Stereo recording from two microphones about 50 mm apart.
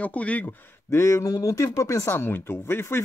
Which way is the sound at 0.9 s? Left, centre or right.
Left.